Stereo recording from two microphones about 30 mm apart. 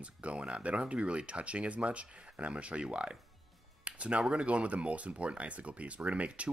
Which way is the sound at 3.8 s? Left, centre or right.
Right.